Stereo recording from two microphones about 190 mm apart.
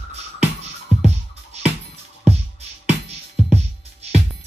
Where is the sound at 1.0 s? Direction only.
35° right (ahead or behind).